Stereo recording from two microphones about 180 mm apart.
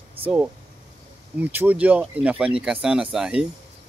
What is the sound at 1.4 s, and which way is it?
Speech, 10° right (ahead or behind).